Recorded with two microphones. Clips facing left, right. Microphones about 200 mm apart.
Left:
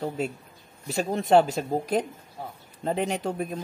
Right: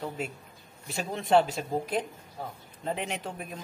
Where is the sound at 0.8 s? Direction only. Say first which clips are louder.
Left 6 dB; 40° left (ahead or behind).